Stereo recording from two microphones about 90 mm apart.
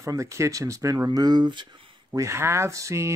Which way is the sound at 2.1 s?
35° right (ahead or behind).